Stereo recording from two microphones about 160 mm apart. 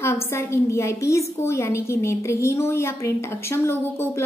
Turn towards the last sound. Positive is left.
turn(degrees=15)  # may be behind; listen again after turning